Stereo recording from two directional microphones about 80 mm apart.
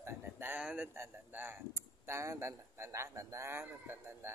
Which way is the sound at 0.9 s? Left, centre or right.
Right.